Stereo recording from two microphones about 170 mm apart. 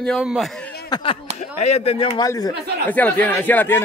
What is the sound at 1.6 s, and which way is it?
Speech, 35° left (ahead or behind).